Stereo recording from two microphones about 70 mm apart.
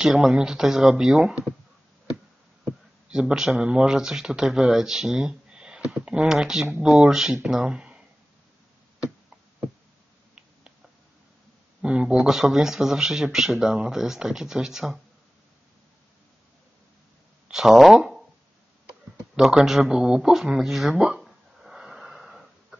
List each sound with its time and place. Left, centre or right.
0.0 s speech: centre
3.1 s speech: centre
11.8 s speech: centre
17.5 s speech: centre
19.3 s speech: centre
19.8 s a sound: centre